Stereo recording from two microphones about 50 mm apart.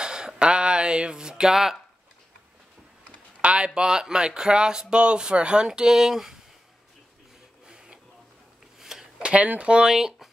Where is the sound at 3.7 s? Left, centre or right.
Centre.